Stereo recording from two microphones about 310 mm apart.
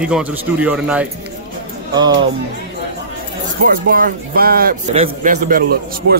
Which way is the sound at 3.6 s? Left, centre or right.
Right.